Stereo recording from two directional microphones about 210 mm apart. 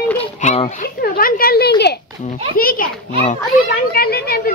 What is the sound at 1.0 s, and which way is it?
A child's voice, 45° left (ahead or behind).